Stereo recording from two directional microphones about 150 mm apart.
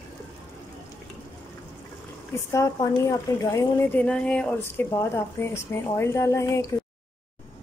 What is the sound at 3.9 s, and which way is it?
A woman's voice, 10° left (ahead or behind).